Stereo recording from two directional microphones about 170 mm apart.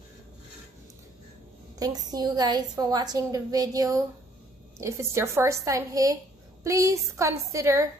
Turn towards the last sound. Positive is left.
turn(degrees=-20)  # may be behind; listen again after turning